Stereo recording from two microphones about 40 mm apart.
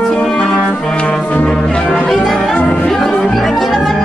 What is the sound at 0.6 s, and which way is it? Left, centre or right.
Brass instrument, centre.